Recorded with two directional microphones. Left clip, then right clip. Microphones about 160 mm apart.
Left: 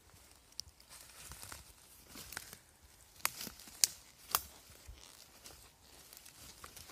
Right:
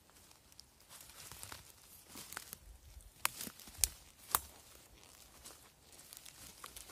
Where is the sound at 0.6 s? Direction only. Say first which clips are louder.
Left 14 dB; 10° left (ahead or behind).